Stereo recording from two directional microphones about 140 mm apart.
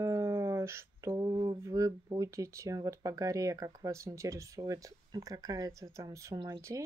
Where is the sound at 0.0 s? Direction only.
20° right (ahead or behind).